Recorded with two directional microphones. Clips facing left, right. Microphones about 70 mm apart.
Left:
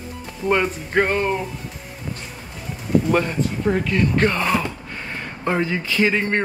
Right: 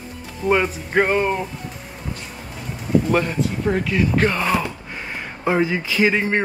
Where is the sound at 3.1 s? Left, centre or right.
Centre.